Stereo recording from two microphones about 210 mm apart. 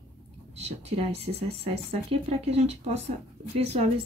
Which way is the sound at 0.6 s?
30° right (ahead or behind).